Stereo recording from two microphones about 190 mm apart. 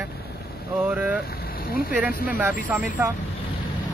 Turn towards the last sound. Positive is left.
turn(degrees=-10)  # may be behind; listen again after turning